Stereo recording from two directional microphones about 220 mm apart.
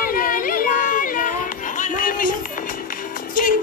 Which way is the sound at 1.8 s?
40° left (ahead or behind).